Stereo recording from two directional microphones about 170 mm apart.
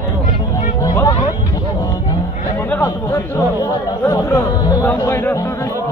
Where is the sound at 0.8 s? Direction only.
20° left (ahead or behind).